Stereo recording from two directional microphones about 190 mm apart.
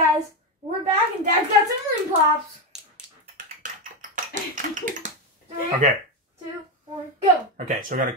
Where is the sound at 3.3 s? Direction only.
45° right (ahead or behind).